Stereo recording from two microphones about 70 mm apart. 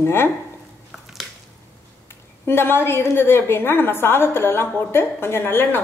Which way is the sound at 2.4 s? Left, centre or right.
Left.